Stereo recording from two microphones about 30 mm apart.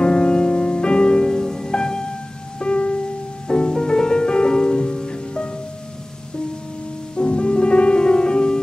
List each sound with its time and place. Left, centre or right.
0.0 s music: left
1.4 s music: centre
2.6 s music: left
3.4 s music: left
7.2 s music: left